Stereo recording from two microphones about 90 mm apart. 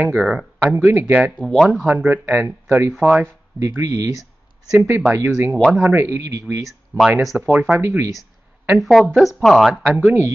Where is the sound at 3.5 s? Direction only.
30° right (ahead or behind).